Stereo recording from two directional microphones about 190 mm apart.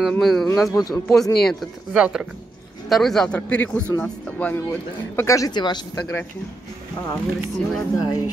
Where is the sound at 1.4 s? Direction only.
5° right (ahead or behind); by 6.0 s 20° left (ahead or behind).